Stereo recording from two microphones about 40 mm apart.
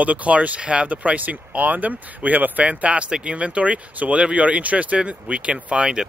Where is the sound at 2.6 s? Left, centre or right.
Right.